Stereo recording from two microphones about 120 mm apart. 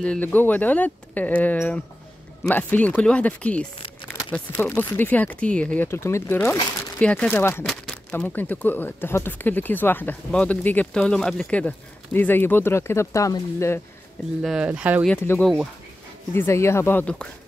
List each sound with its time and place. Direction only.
0.0 s speech: 10° left (ahead or behind)
4.6 s speech: 20° left (ahead or behind)
7.6 s a sound: 5° left (ahead or behind)
8.1 s speech: 15° left (ahead or behind)
14.4 s speech: 5° right (ahead or behind)
16.3 s speech: 20° left (ahead or behind)
17.0 s speech: 10° left (ahead or behind)